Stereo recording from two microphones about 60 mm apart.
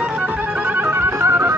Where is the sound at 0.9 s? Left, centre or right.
Right.